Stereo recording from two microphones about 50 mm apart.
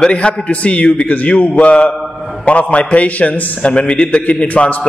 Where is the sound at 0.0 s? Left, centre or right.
Left.